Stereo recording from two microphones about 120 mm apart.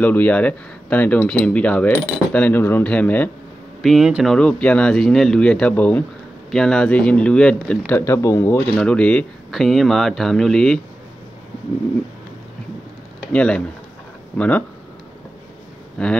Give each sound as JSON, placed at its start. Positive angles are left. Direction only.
{"t": 0.0, "sound": "speech", "side_deg": 15}
{"t": 3.8, "sound": "speech", "side_deg": 0}
{"t": 7.9, "sound": "speech", "side_deg": 20}
{"t": 8.5, "sound": "speech", "side_deg": 10}
{"t": 13.3, "sound": "speech", "side_deg": 10}